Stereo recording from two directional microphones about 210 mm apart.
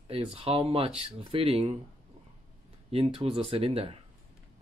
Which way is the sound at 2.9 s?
25° right (ahead or behind).